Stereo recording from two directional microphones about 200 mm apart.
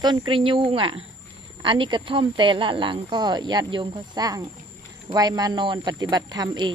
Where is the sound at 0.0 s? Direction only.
20° right (ahead or behind).